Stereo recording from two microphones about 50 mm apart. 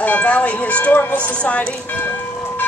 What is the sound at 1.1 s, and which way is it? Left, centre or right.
Speech, left.